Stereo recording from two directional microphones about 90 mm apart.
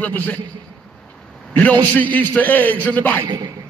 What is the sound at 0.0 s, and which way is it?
Speech, 20° left (ahead or behind).